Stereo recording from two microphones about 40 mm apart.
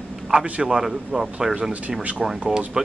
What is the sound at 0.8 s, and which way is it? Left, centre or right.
Speech, centre.